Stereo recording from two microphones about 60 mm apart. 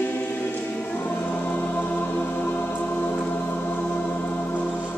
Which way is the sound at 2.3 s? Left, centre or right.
Left.